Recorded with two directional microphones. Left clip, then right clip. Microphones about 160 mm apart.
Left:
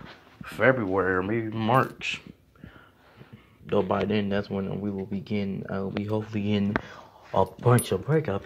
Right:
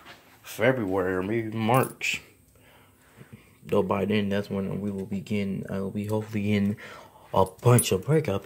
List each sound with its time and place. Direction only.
0.4 s speech: 35° right (ahead or behind)
1.6 s speech: 55° right (ahead or behind)
3.6 s speech: 40° right (ahead or behind)
7.6 s speech: 80° right